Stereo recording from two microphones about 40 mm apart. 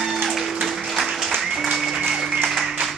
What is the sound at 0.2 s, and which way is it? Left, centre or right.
Music, centre.